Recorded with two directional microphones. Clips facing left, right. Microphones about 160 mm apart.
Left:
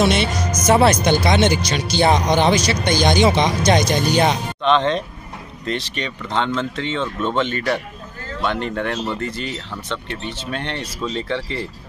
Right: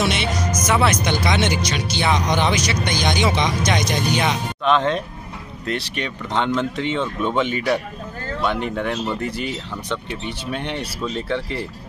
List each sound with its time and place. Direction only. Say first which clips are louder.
0.0 s speech: left 4 dB; 35° left (ahead or behind)
4.6 s speech: left 1 dB; 5° right (ahead or behind)